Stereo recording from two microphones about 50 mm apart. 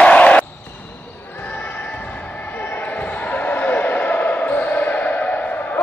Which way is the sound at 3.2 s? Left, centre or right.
Left.